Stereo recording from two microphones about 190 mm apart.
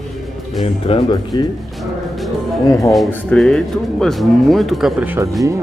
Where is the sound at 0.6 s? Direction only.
25° left (ahead or behind).